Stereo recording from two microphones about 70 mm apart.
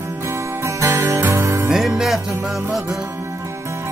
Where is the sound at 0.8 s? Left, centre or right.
Right.